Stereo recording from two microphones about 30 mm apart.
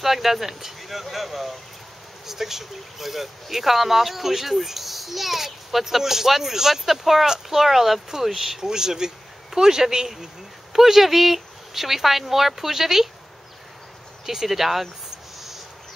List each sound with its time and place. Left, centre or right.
0.0 s speech: centre
8.6 s speech: right
14.2 s speech: centre